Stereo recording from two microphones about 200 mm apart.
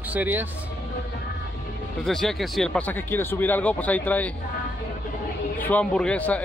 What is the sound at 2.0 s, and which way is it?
Speech, centre (ahead or behind).